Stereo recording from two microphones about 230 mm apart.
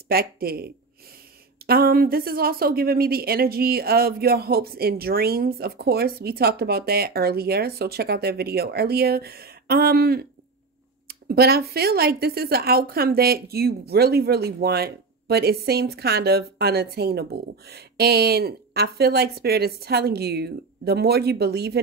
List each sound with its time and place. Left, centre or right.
0.1 s speech: right
1.7 s speech: right